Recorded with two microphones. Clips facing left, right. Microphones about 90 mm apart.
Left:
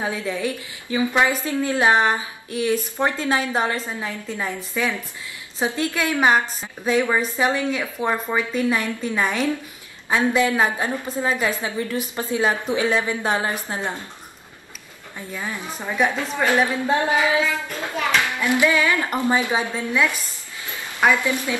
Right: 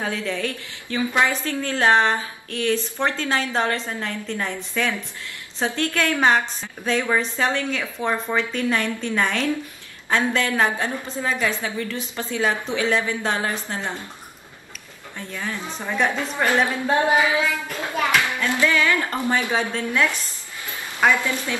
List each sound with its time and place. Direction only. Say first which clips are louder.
0.0 s a woman's voice: left 1 dB; 15° left (ahead or behind)
15.1 s a woman's voice: even; 15° left (ahead or behind)
18.4 s a woman's voice: left 2 dB; 15° left (ahead or behind)